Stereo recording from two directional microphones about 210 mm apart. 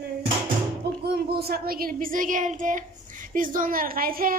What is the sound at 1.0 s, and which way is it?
A child's voice, 50° right (ahead or behind).